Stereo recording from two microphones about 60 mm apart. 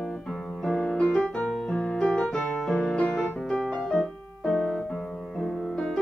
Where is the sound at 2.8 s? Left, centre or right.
Centre.